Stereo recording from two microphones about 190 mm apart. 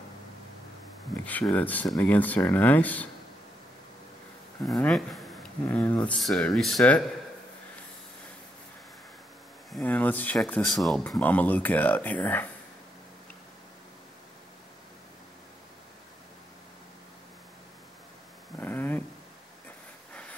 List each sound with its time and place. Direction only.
1.2 s speech: 10° left (ahead or behind)
4.6 s speech: 5° left (ahead or behind)
9.7 s speech: 5° left (ahead or behind)
18.6 s a sound: 10° left (ahead or behind)